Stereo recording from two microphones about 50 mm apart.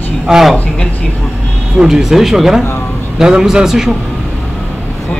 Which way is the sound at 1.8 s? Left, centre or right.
Centre.